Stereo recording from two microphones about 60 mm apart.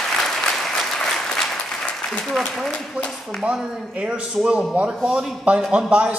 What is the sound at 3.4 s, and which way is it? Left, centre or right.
A man's voice, centre.